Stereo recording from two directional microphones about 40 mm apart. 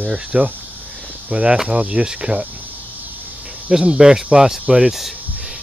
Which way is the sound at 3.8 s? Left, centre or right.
Right.